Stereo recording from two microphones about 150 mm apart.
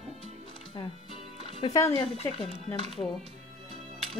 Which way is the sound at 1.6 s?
20° left (ahead or behind).